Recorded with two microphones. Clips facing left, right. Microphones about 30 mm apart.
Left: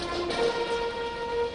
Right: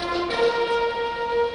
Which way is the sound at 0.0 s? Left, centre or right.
Right.